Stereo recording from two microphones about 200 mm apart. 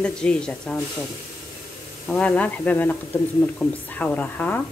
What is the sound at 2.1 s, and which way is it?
Speech, 5° left (ahead or behind).